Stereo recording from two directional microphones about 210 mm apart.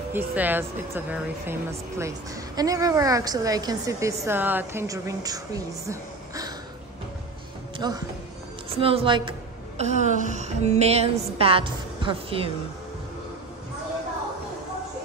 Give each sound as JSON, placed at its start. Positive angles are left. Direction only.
{"t": 0.1, "sound": "speech", "side_deg": -10}
{"t": 7.7, "sound": "music", "side_deg": -20}
{"t": 8.7, "sound": "a woman's voice", "side_deg": -25}
{"t": 9.8, "sound": "a woman's voice", "side_deg": -35}